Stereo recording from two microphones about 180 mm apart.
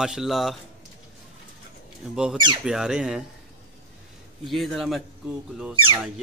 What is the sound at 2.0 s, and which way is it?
Speech, centre (ahead or behind).